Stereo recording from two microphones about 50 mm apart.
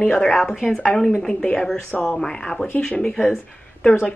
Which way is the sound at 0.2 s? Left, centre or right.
Centre.